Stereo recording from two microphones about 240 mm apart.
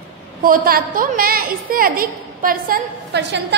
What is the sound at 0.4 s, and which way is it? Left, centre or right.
A woman's voice, right.